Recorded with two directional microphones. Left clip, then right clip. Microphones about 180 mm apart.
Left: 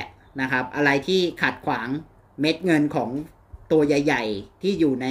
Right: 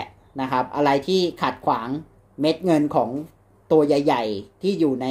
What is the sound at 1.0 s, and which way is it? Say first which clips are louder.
Speech: right 1 dB; 20° right (ahead or behind).